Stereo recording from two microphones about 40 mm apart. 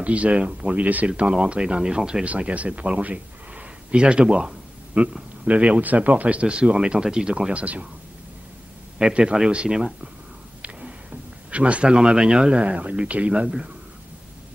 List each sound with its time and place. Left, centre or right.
0.0 s speech: right
1.1 s speech: right
2.2 s speech: right
3.9 s speech: right
5.4 s speech: right
7.5 s speech: right
9.2 s speech: centre
10.6 s speech: right